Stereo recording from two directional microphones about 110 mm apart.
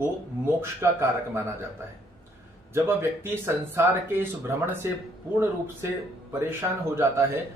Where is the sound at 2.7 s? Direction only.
20° right (ahead or behind).